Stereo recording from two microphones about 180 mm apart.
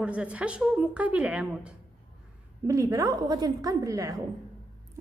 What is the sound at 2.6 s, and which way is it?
A woman's voice, 20° right (ahead or behind).